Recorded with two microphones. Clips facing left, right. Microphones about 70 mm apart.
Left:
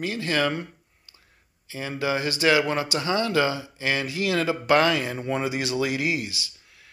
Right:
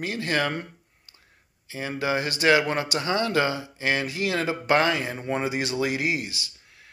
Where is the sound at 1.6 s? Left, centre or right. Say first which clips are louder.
Even; right.